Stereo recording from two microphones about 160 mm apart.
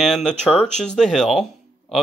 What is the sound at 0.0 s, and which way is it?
Speech, centre (ahead or behind).